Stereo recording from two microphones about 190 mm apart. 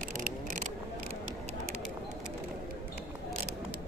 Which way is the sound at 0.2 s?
45° right (ahead or behind).